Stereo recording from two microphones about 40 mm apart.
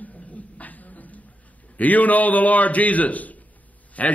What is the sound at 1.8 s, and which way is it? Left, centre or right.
A man's voice, left.